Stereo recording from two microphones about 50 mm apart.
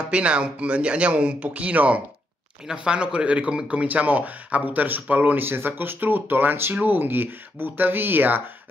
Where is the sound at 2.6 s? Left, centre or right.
Centre; by 8.4 s right.